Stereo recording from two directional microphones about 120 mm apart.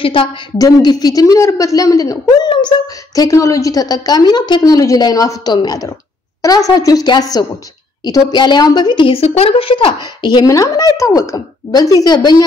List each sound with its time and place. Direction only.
0.0 s a woman's voice: 45° left (ahead or behind)
0.6 s a woman's voice: 30° left (ahead or behind)
3.2 s a woman's voice: 25° left (ahead or behind)